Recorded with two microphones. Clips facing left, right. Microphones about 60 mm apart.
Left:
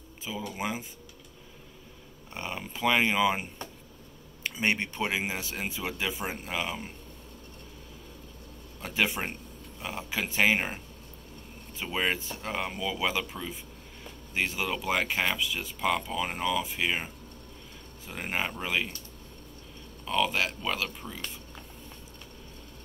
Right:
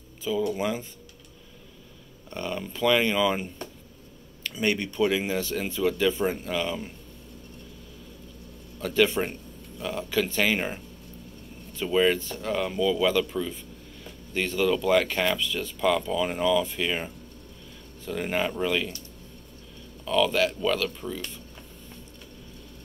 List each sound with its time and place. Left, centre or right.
0.2 s speech: centre
2.3 s speech: centre
8.8 s speech: centre
20.1 s speech: centre